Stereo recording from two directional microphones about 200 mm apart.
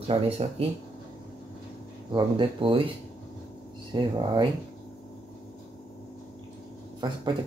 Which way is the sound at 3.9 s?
20° right (ahead or behind).